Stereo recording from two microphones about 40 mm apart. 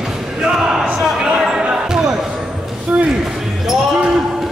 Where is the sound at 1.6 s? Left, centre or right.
Centre.